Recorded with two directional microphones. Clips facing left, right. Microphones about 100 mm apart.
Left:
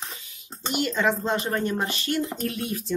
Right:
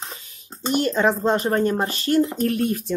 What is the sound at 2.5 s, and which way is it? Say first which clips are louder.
Speech: right 7 dB; 50° right (ahead or behind).